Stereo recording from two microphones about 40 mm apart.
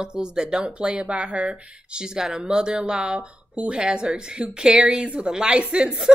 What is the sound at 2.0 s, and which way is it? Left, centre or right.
A woman's voice, centre.